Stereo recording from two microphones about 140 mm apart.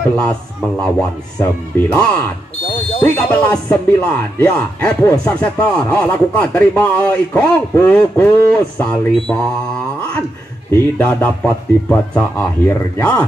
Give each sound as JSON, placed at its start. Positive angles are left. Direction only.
{"t": 0.1, "sound": "speech", "side_deg": 5}
{"t": 2.6, "sound": "smoke detector", "side_deg": 40}
{"t": 3.0, "sound": "speech", "side_deg": 10}
{"t": 10.7, "sound": "speech", "side_deg": 10}